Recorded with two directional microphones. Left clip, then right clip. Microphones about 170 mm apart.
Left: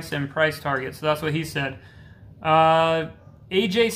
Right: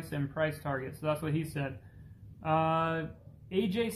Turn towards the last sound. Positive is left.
turn(degrees=10)  # may be behind; listen again after turning